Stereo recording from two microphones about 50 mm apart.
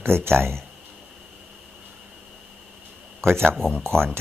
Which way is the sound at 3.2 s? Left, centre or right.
Right.